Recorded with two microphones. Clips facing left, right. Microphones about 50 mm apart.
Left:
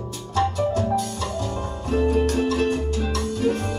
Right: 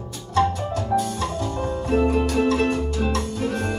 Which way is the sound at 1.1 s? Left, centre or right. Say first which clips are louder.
Right 2 dB; right.